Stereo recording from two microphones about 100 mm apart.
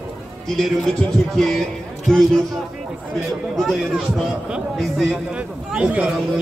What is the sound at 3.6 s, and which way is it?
Speech, centre (ahead or behind).